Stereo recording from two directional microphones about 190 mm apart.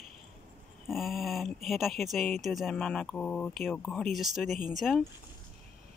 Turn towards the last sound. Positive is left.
turn(degrees=0)  # may be behind; listen again after turning